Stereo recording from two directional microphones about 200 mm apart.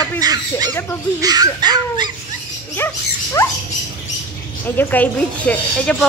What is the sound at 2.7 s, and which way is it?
Dog, 10° left (ahead or behind).